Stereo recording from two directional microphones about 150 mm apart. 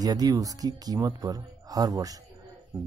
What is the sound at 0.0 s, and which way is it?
A man's voice, 25° right (ahead or behind).